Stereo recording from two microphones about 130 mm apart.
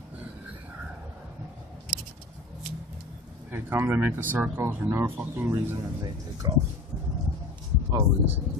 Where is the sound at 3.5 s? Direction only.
15° right (ahead or behind).